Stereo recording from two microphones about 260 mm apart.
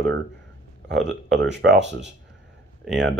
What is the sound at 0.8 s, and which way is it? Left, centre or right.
Speech, right.